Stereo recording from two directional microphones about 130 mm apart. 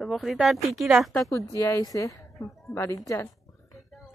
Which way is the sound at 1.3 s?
25° left (ahead or behind).